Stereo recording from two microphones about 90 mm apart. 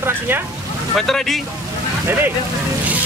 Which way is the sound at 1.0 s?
5° left (ahead or behind).